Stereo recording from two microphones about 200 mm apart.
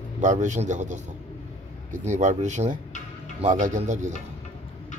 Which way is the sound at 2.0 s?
35° right (ahead or behind).